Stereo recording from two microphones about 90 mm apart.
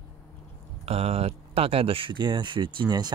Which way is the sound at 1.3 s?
90° right.